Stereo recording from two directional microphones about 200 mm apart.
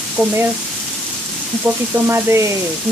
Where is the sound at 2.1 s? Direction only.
15° right (ahead or behind).